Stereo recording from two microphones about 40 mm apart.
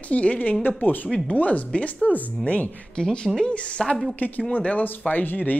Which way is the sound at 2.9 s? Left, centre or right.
Left.